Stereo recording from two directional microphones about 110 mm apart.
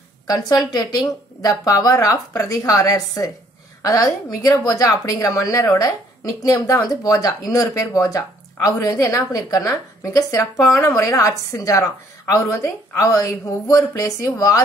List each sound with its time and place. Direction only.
0.3 s a woman's voice: 35° left (ahead or behind)